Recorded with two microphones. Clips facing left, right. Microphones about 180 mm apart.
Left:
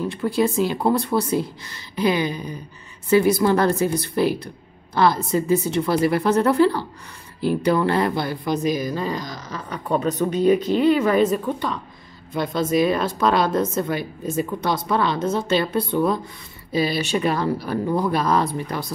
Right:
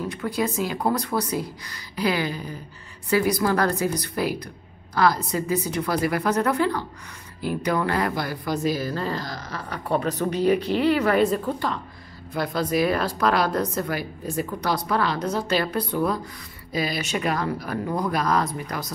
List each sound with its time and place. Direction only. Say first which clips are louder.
0.1 s speech: left 5 dB; 25° left (ahead or behind)